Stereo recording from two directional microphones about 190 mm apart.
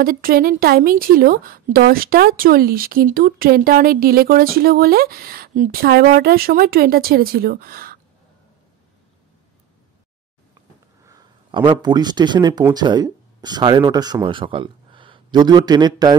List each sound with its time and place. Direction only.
0.0 s a woman's voice: 50° right (ahead or behind)
11.1 s a man's voice: 20° right (ahead or behind)